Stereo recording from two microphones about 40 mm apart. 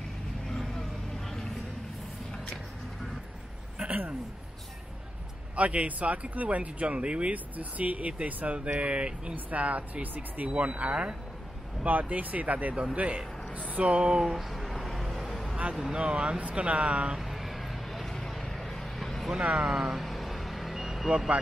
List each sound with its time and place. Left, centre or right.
0.5 s vehicle: centre
5.6 s speech: right
7.5 s speech: right
8.7 s speech: right
9.3 s speech: right
13.9 s speech: right
14.2 s a sound: centre
15.5 s a sound: right
15.9 s speech: right
17.2 s vehicle: centre
19.4 s speech: right
19.7 s vehicle: centre